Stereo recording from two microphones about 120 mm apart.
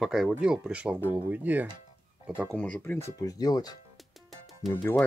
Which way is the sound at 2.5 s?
10° left (ahead or behind).